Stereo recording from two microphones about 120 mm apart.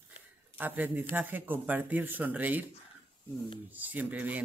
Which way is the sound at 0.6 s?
15° right (ahead or behind).